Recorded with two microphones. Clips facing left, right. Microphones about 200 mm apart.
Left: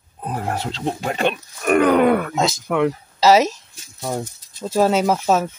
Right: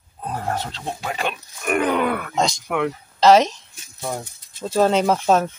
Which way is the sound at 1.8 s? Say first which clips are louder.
Left 6 dB; 40° left (ahead or behind).